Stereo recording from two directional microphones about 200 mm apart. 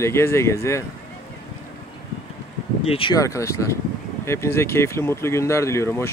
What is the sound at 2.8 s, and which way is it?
Speech, 30° left (ahead or behind).